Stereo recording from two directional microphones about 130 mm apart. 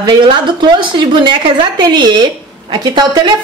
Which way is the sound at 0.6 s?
35° right (ahead or behind).